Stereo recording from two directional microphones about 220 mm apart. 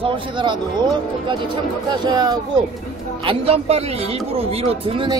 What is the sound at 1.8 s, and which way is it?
Speech, 20° right (ahead or behind).